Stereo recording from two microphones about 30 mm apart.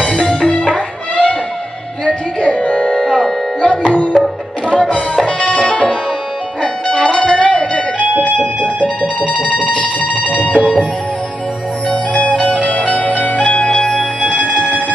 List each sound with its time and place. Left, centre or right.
0.0 s music: left
2.4 s music: left
4.6 s music: left
10.5 s music: left
11.9 s music: left